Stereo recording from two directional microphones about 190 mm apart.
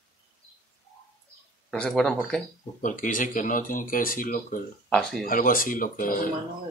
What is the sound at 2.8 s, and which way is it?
Speech, 45° left (ahead or behind).